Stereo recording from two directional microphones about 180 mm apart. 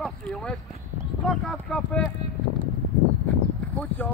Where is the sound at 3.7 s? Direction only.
5° left (ahead or behind).